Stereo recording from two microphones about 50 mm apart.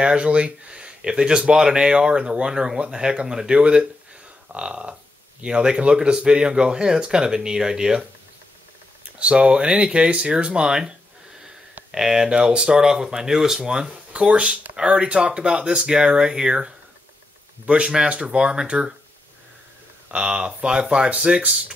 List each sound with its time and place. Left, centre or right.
0.0 s speech: right
9.2 s speech: centre
20.1 s speech: right